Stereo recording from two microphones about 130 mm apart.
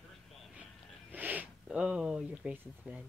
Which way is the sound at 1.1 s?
15° right (ahead or behind).